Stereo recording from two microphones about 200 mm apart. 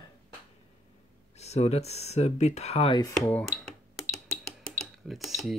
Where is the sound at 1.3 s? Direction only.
35° left (ahead or behind).